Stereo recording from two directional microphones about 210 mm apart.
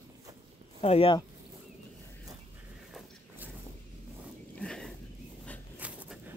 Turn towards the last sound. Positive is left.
turn(degrees=-5)  # may be behind; listen again after turning